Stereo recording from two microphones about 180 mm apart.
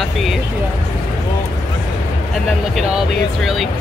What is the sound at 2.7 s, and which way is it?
Speech, centre (ahead or behind).